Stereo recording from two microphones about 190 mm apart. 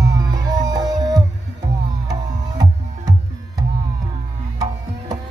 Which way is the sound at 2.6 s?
20° right (ahead or behind).